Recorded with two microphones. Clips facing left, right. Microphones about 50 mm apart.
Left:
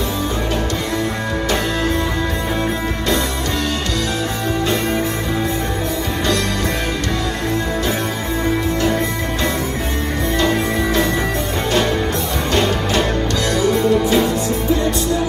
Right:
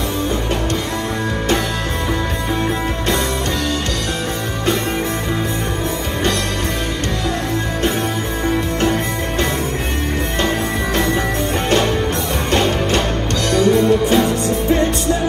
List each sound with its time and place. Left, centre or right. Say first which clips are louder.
12.4 s music: right 1 dB; right